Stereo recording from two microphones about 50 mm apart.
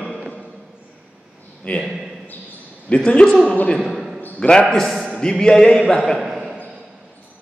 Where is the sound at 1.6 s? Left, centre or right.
Centre.